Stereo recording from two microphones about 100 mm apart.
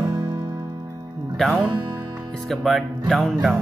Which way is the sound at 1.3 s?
Centre (ahead or behind).